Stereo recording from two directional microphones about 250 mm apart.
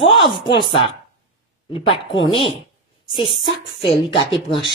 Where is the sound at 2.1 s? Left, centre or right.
Left.